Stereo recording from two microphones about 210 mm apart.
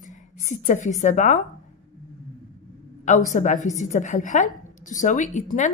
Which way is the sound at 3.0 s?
35° left (ahead or behind).